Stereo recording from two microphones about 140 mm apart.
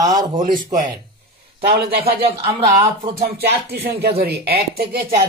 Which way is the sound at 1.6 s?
90° right.